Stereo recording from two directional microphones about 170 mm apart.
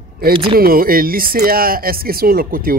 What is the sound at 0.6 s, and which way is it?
Speech, 60° right (ahead or behind).